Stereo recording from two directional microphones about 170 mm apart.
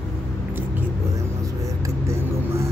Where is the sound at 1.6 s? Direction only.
20° right (ahead or behind).